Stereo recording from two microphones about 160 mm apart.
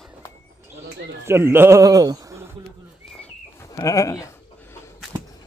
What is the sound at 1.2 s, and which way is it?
A man's voice, 15° right (ahead or behind).